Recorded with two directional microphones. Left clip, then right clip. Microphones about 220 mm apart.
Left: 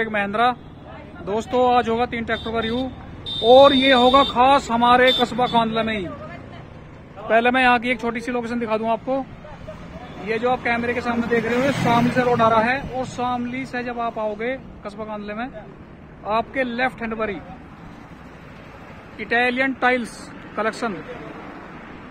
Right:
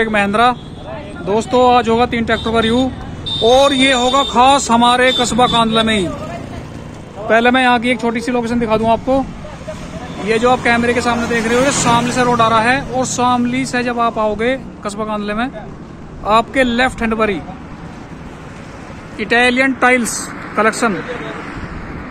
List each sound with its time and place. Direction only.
0.0 s a man's voice: 5° right (ahead or behind)
7.2 s a man's voice: 5° right (ahead or behind)
10.2 s a man's voice: 5° right (ahead or behind)
19.1 s a man's voice: 5° right (ahead or behind)